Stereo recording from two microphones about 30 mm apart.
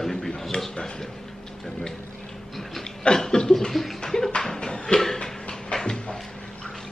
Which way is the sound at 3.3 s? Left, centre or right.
Left.